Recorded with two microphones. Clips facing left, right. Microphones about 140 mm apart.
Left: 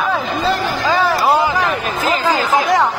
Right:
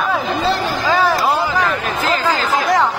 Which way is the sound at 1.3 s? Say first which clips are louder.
Left 2 dB; 15° left (ahead or behind).